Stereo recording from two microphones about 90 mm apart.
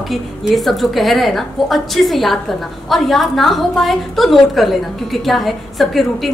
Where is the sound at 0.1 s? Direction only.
Centre (ahead or behind).